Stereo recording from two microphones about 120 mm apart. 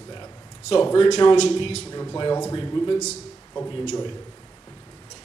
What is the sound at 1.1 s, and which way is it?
Speech, 30° left (ahead or behind).